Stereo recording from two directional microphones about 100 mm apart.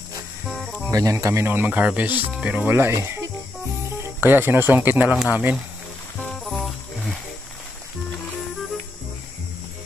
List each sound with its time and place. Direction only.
0.5 s cricket: centre (ahead or behind)
0.9 s speech: 35° right (ahead or behind); by 2.7 s 10° right (ahead or behind)
2.7 s speech: 25° right (ahead or behind)
6.4 s music: centre (ahead or behind)